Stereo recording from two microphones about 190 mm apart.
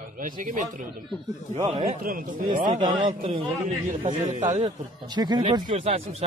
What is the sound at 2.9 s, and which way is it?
Speech, 25° right (ahead or behind).